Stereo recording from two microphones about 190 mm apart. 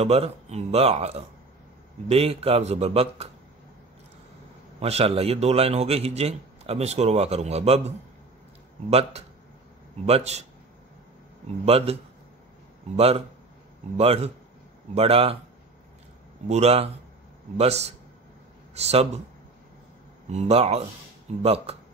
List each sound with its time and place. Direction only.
0.0 s a man's voice: 30° right (ahead or behind)
4.7 s a man's voice: 35° right (ahead or behind)
10.0 s a man's voice: 35° right (ahead or behind)
11.6 s a man's voice: 30° right (ahead or behind)
16.4 s a man's voice: 35° right (ahead or behind)
20.2 s a man's voice: 35° right (ahead or behind)